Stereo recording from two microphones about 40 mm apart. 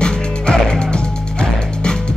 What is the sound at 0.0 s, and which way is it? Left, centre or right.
Music, centre.